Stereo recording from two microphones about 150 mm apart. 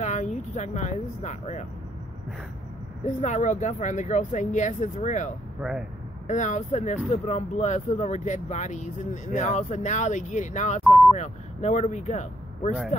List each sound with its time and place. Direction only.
0.0 s speech: 50° left (ahead or behind)
3.1 s speech: 55° left (ahead or behind)
5.6 s speech: 5° right (ahead or behind)
6.2 s speech: 55° left (ahead or behind)